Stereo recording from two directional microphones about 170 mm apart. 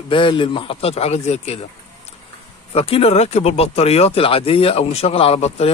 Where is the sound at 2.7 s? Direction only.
35° left (ahead or behind).